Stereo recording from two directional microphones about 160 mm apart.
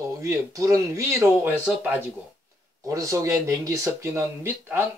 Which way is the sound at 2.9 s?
20° right (ahead or behind).